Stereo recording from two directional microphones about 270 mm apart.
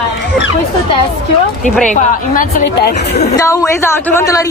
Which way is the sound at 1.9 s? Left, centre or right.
Left.